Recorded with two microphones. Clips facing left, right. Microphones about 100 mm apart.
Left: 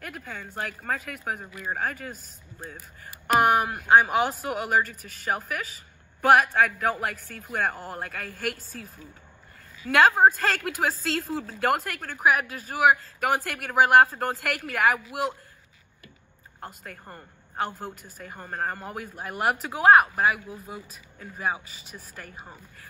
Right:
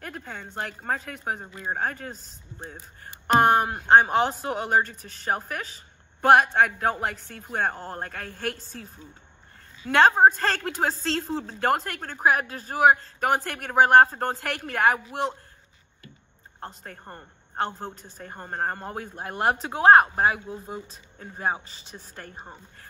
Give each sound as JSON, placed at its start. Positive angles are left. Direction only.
{"t": 0.0, "sound": "a woman's voice", "side_deg": -30}
{"t": 16.5, "sound": "a woman's voice", "side_deg": -30}